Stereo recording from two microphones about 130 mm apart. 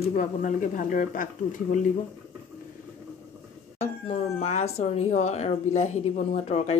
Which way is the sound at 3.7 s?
55° left (ahead or behind).